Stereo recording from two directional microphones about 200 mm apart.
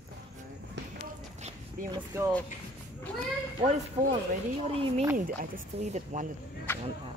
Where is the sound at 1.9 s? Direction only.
15° right (ahead or behind).